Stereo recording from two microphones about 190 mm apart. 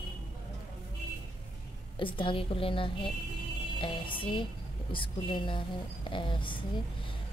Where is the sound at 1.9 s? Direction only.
25° left (ahead or behind).